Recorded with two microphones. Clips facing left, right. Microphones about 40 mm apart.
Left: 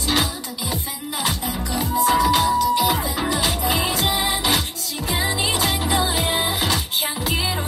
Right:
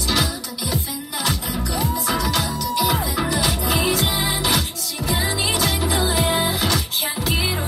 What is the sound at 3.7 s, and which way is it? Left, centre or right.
Music, centre.